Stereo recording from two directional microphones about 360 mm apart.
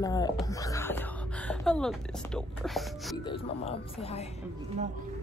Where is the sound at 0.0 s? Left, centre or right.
Centre.